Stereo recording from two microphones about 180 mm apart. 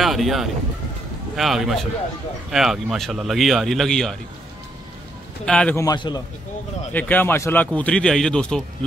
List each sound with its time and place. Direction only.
0.0 s a man's voice: centre (ahead or behind)
5.4 s a man's voice: 5° left (ahead or behind)
5.8 s a man's voice: 20° left (ahead or behind)
6.9 s speech: 10° left (ahead or behind)